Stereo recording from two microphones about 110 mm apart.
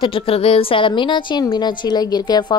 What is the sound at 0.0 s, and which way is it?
A woman's voice, 55° left (ahead or behind).